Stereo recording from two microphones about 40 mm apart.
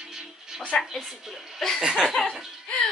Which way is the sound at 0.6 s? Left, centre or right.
Left.